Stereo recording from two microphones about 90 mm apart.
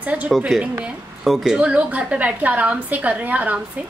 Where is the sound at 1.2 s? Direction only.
5° right (ahead or behind).